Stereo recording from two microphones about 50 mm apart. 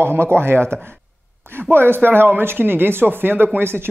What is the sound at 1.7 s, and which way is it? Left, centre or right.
Speech, right.